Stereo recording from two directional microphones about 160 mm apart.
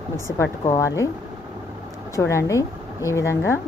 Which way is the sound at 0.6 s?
20° left (ahead or behind).